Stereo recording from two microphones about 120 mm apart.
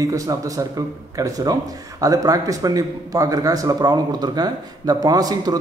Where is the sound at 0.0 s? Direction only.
30° right (ahead or behind).